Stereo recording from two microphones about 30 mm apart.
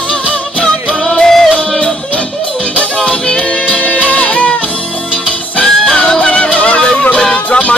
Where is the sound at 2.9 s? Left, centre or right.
Left.